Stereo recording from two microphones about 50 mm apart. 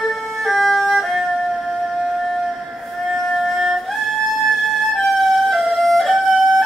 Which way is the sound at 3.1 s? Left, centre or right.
Centre.